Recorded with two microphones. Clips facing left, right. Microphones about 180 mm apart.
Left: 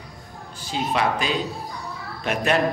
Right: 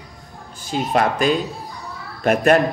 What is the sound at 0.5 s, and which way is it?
A man's voice, 50° right (ahead or behind).